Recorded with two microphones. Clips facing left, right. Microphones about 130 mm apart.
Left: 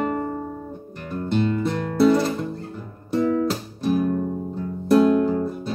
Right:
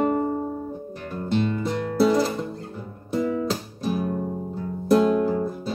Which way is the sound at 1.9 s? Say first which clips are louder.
Left 2 dB; centre (ahead or behind).